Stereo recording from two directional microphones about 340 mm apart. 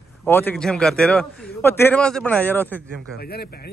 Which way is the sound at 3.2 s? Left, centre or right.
Left.